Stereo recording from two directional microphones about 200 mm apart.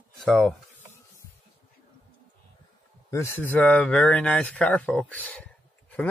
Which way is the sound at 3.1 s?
10° left (ahead or behind).